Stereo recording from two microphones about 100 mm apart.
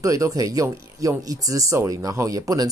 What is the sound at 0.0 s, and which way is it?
Speech, 35° right (ahead or behind).